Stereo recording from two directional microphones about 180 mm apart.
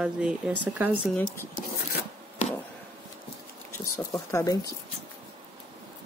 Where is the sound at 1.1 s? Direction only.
5° left (ahead or behind).